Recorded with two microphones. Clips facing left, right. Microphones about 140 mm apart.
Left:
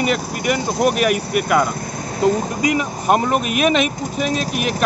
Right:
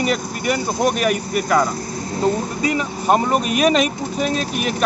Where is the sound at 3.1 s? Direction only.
5° left (ahead or behind).